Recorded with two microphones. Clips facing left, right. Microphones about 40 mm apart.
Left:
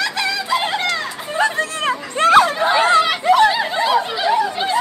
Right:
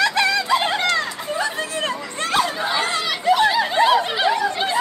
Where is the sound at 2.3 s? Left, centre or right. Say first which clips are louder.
Left 7 dB; left.